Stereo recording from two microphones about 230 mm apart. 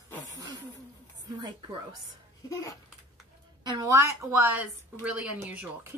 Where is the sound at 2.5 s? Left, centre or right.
Centre.